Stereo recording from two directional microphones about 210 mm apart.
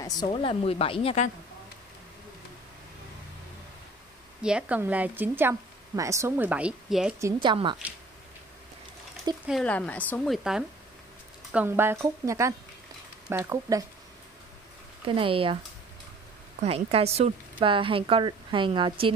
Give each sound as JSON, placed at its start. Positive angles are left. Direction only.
{"t": 0.0, "sound": "a woman's voice", "side_deg": 20}
{"t": 4.4, "sound": "a woman's voice", "side_deg": -5}
{"t": 7.2, "sound": "a woman's voice", "side_deg": -20}
{"t": 9.5, "sound": "a woman's voice", "side_deg": 5}
{"t": 15.0, "sound": "a woman's voice", "side_deg": -25}